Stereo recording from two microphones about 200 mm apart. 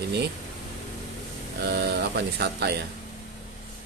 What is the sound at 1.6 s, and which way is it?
Speech, 55° right (ahead or behind).